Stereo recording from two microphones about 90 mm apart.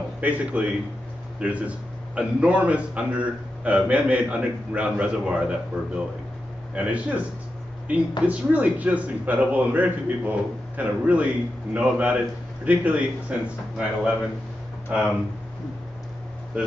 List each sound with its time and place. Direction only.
0.2 s a man's voice: 15° right (ahead or behind)